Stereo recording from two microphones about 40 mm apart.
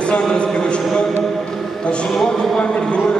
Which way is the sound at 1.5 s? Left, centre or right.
Centre.